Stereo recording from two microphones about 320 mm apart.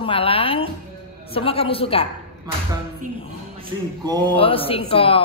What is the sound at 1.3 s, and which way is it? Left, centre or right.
Speech, centre.